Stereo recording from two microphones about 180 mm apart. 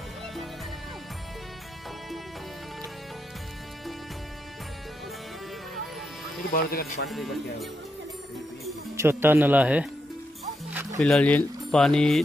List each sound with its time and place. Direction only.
6.5 s speech: 60° left (ahead or behind)
7.1 s speech: centre (ahead or behind)
8.9 s speech: 15° right (ahead or behind)
10.7 s music: 15° right (ahead or behind)
11.0 s speech: 5° left (ahead or behind)